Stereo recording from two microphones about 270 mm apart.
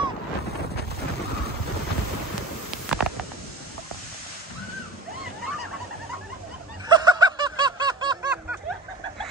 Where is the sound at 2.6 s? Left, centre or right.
Centre.